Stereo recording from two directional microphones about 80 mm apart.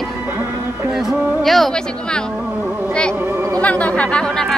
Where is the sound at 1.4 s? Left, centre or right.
Centre.